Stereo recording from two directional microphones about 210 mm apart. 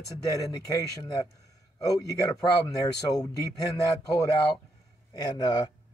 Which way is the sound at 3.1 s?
15° left (ahead or behind).